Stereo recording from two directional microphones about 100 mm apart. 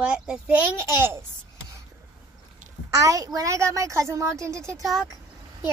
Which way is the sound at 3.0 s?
35° right (ahead or behind).